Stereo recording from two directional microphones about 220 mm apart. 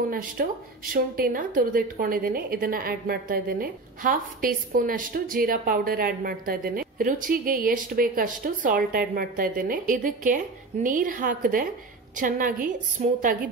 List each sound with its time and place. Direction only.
0.1 s a woman's voice: 40° right (ahead or behind)